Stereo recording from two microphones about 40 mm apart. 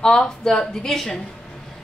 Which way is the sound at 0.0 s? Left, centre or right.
Centre.